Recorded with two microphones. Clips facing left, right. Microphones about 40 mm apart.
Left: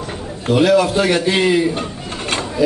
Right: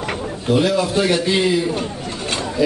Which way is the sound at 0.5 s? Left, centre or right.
Left.